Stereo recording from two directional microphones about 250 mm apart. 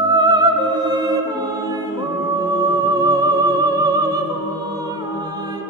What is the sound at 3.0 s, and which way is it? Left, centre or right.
Music, centre.